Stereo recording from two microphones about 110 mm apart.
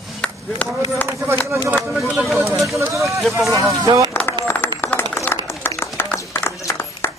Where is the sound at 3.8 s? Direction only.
30° right (ahead or behind).